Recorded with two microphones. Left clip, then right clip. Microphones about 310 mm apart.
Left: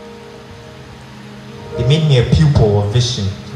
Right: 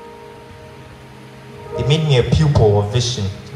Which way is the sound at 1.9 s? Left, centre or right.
Right.